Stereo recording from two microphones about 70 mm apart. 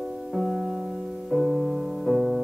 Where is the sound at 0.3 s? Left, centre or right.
Centre.